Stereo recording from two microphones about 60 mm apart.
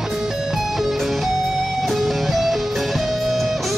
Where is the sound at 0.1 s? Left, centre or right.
Centre.